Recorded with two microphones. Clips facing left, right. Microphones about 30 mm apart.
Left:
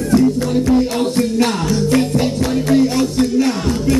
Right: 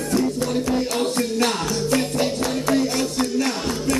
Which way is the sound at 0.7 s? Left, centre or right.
Centre.